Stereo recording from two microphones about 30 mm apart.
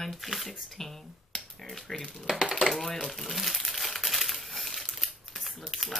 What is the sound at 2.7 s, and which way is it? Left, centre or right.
Crumpling, centre.